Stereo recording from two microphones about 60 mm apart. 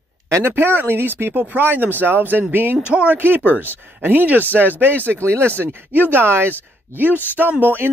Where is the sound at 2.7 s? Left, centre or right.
Centre; by 7.1 s right.